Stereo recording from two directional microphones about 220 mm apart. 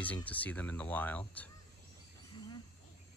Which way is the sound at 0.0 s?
5° left (ahead or behind).